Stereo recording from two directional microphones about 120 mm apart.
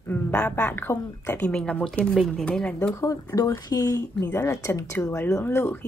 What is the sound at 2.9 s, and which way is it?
Speech, 30° left (ahead or behind).